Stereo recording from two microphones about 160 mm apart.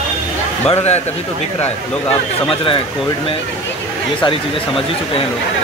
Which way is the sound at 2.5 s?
35° left (ahead or behind).